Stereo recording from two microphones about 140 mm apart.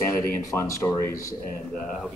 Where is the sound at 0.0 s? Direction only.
20° left (ahead or behind).